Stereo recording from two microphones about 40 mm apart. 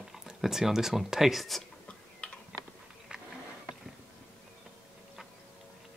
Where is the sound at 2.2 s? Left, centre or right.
Left.